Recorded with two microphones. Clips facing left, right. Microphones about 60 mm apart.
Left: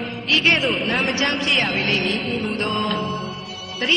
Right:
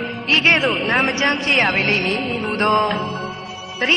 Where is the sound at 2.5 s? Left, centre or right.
Right.